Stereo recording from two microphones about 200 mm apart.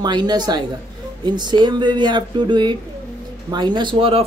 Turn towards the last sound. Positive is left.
turn(degrees=-25)  # may be behind; listen again after turning